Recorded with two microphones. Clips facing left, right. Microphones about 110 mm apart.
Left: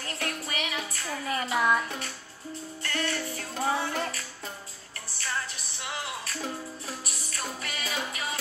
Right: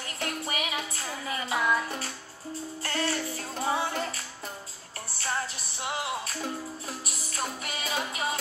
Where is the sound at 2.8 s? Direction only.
30° right (ahead or behind).